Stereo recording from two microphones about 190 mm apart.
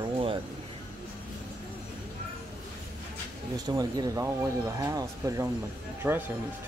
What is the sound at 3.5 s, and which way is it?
Speech, 20° right (ahead or behind).